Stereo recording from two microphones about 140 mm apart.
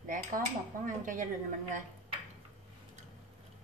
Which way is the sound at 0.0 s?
65° right (ahead or behind).